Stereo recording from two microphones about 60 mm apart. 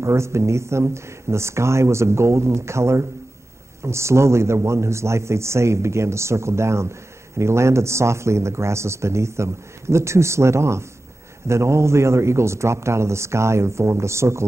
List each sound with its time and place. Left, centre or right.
0.0 s speech: right